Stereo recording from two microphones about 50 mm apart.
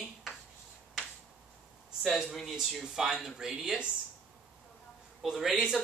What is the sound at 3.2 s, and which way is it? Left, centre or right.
Speech, centre.